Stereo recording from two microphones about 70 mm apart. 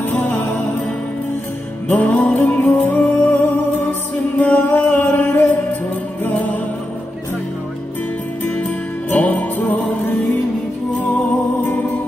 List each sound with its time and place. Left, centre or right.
0.1 s music: left
1.9 s music: left
4.4 s music: left
8.5 s music: left